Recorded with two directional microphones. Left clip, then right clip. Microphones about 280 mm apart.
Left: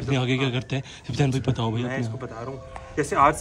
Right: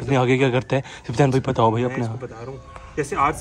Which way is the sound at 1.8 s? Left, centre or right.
Centre.